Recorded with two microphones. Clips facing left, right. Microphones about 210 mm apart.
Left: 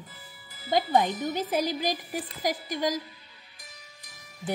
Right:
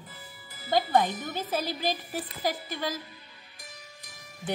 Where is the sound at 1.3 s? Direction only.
15° left (ahead or behind).